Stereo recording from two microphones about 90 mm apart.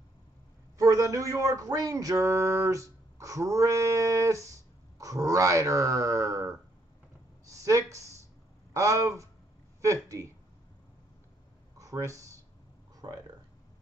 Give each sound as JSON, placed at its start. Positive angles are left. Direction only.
{"t": 0.7, "sound": "speech", "side_deg": -40}
{"t": 11.8, "sound": "speech", "side_deg": -35}
{"t": 13.0, "sound": "speech", "side_deg": -55}